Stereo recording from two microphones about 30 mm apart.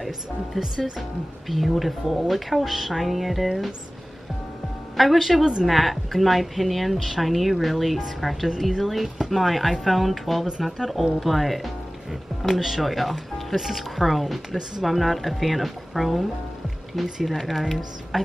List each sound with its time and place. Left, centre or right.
0.6 s speech: centre
1.5 s speech: centre
4.9 s speech: centre
5.4 s speech: right
5.7 s speech: centre